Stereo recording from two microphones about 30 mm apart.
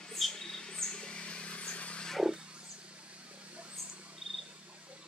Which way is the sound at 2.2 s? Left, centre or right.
Right.